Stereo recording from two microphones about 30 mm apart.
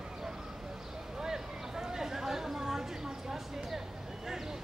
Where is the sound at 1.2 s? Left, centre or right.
Centre.